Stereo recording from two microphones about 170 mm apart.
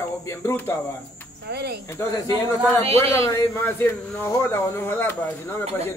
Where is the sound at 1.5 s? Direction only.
70° right (ahead or behind).